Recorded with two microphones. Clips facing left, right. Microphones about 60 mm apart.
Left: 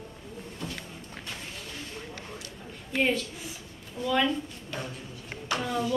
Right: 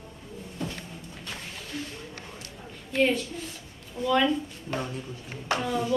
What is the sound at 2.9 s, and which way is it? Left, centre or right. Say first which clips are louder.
A woman's voice: right 3 dB; centre.